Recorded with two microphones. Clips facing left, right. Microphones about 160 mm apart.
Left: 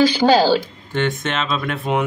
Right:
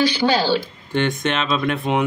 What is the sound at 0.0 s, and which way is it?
Speech, 45° left (ahead or behind).